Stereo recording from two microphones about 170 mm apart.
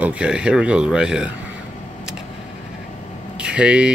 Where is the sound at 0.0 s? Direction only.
5° right (ahead or behind).